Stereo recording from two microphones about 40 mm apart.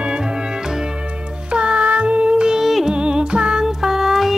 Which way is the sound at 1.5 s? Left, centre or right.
Right.